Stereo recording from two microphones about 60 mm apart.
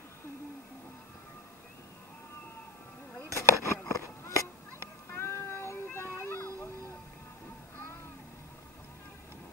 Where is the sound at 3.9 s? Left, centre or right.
Left.